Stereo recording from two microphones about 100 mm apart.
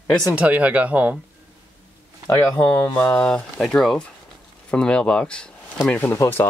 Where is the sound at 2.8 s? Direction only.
15° left (ahead or behind).